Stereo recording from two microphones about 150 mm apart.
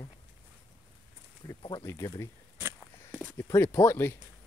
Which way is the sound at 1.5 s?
30° left (ahead or behind).